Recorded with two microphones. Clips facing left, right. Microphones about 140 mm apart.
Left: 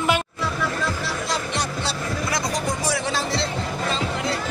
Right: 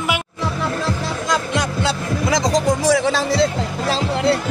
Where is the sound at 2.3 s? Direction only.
90° right; by 4.4 s 70° right (ahead or behind).